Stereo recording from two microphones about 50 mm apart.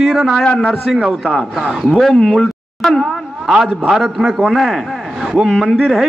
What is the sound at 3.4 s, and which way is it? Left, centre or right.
Speech, centre.